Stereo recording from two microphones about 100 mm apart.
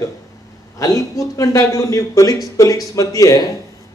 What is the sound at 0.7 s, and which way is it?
A man's voice, 35° left (ahead or behind).